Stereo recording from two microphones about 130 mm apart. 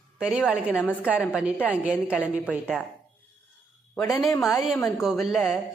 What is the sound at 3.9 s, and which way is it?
Speech, 5° left (ahead or behind).